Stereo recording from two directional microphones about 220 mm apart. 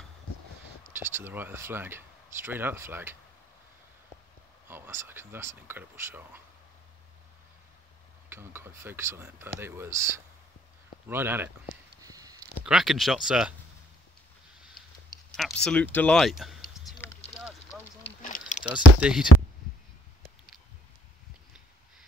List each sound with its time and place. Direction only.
0.9 s speech: 10° right (ahead or behind)
4.6 s speech: 10° right (ahead or behind)
8.3 s speech: 10° right (ahead or behind)
12.0 s a sound: 15° right (ahead or behind)
12.6 s speech: centre (ahead or behind)
15.3 s speech: centre (ahead or behind)
17.2 s a sound: 30° left (ahead or behind)
18.6 s speech: 5° right (ahead or behind)